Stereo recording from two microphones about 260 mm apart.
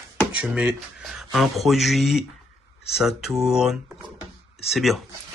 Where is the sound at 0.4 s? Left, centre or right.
Centre.